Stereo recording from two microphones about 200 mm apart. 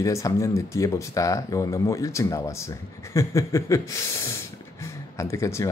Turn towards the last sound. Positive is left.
turn(degrees=15)  # may be behind; listen again after turning